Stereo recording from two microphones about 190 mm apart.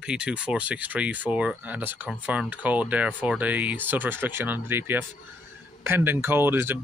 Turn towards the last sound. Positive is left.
turn(degrees=-10)  # may be behind; listen again after turning